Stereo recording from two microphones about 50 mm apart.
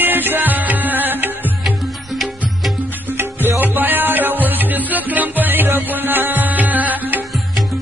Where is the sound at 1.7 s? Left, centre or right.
Centre.